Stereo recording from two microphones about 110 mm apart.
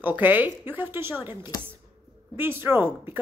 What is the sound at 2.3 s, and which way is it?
Speech, 20° right (ahead or behind).